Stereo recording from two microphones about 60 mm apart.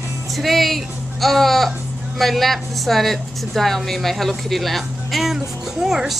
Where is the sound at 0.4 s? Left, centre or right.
Centre.